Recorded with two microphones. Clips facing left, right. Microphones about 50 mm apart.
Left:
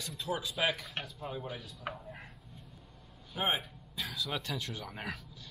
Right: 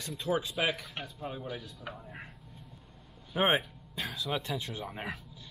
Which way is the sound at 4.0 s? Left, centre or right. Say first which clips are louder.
Right 1 dB; right.